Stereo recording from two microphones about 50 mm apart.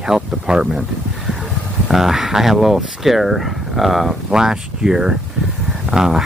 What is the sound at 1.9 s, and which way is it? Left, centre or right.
Speech, centre.